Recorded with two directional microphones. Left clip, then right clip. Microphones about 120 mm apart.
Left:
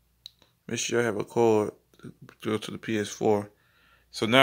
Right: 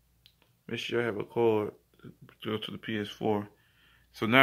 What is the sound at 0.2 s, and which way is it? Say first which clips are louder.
Speech: left 13 dB; 35° left (ahead or behind).